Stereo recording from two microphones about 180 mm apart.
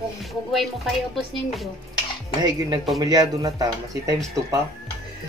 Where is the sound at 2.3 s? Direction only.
20° right (ahead or behind).